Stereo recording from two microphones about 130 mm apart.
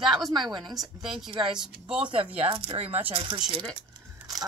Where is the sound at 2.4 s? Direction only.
45° right (ahead or behind).